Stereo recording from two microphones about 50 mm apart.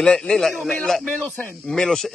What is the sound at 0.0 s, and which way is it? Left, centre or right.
Speech, centre.